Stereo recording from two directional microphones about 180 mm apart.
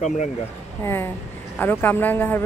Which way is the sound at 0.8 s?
15° left (ahead or behind).